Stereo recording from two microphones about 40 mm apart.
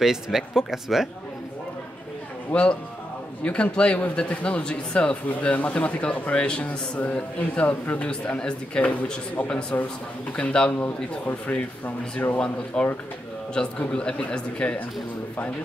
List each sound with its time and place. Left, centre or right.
0.0 s speech: centre
2.5 s speech: left
6.4 s speech: left
7.0 s speech: left
8.1 s speech: left
10.8 s speech: left
12.7 s speech: left